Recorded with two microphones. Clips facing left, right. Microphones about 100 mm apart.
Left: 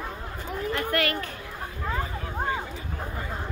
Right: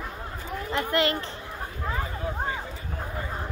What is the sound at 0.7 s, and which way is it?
Speech, 25° right (ahead or behind).